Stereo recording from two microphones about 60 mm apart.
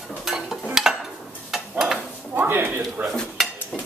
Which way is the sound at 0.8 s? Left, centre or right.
Centre.